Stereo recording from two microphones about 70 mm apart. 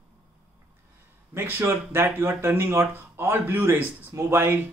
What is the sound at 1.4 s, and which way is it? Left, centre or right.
Speech, right.